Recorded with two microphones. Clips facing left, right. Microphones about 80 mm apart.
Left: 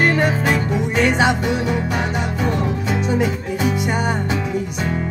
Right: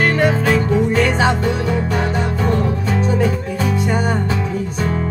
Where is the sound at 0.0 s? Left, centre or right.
Left.